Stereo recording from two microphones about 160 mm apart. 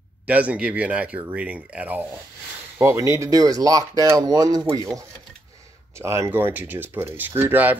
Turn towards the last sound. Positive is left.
turn(degrees=-10)  # may be behind; listen again after turning